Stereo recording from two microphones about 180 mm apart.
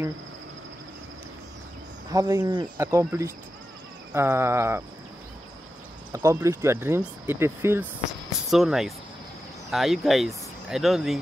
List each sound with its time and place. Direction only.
2.0 s speech: 20° right (ahead or behind)
6.1 s speech: 15° right (ahead or behind)
8.5 s speech: centre (ahead or behind)